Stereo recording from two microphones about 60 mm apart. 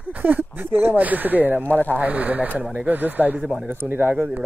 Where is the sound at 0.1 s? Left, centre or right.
Right.